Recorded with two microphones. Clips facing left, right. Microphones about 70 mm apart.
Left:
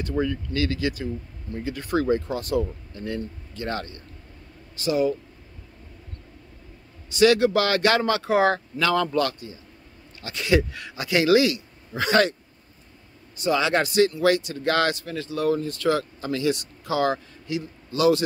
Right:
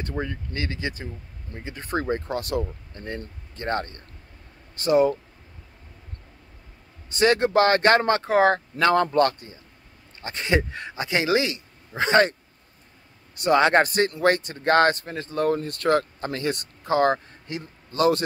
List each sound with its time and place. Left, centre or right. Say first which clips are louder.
0.2 s a man's voice: left 7 dB; right
2.2 s speech: left 2 dB; right
3.0 s speech: left 4 dB; right
7.1 s a man's voice: left 2 dB; right
13.4 s speech: right 4 dB; right